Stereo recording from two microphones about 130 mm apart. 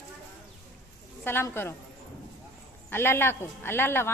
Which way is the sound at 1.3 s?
15° left (ahead or behind).